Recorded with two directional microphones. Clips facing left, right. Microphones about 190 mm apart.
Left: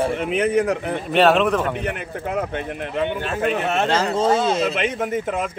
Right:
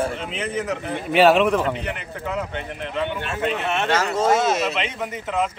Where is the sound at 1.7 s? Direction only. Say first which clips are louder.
Left 3 dB; 55° left (ahead or behind); by 4.6 s 30° left (ahead or behind).